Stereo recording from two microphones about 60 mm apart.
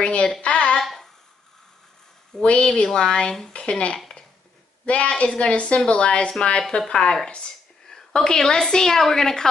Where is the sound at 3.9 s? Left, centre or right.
Centre.